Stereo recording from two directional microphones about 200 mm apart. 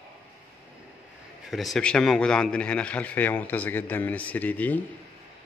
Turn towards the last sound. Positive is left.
turn(degrees=10)  # may be behind; listen again after turning